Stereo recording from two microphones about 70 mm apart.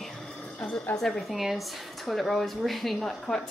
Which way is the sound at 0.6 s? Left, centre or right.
Left.